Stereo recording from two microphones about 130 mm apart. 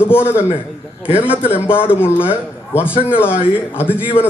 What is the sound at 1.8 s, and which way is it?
A man's voice, 15° left (ahead or behind).